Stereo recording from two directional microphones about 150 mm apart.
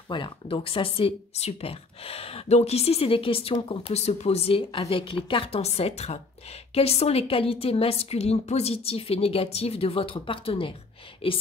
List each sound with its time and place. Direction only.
0.1 s speech: 35° left (ahead or behind)